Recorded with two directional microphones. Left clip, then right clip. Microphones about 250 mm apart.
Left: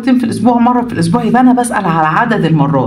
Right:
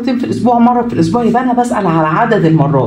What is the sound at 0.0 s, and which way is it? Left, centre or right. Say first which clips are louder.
A man's voice: left 2 dB; left.